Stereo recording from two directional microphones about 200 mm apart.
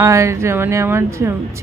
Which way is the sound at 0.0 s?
15° right (ahead or behind).